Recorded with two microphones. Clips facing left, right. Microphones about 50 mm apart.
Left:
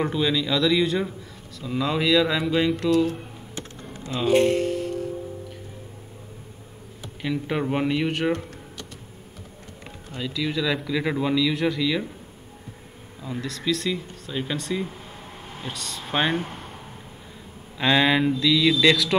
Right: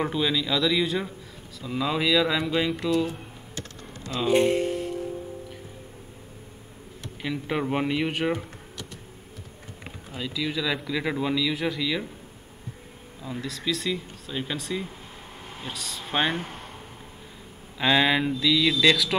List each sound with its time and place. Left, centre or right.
0.0 s a man's voice: centre
3.5 s computer keyboard: left
4.3 s speech: centre
7.0 s speech: centre
10.0 s a man's voice: centre
13.2 s a man's voice: centre
17.7 s a man's voice: centre